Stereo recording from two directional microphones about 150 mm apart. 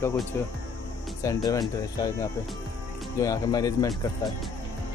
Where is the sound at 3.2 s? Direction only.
25° left (ahead or behind).